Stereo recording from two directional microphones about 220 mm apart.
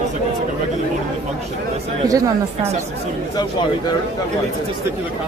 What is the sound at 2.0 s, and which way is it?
Speech, 15° right (ahead or behind).